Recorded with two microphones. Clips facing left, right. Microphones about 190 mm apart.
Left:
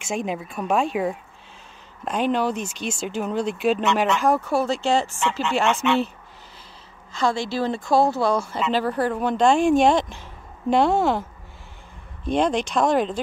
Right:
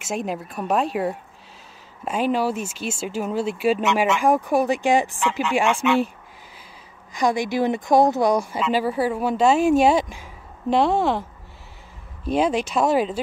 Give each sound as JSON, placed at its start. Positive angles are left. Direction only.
{"t": 0.0, "sound": "speech", "side_deg": 0}
{"t": 7.1, "sound": "speech", "side_deg": -15}
{"t": 12.3, "sound": "speech", "side_deg": -5}